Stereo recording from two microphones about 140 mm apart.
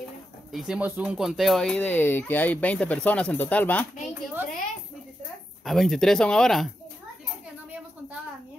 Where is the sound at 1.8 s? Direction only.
15° left (ahead or behind).